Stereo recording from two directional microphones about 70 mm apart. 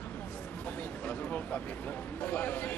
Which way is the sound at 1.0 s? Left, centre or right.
Left.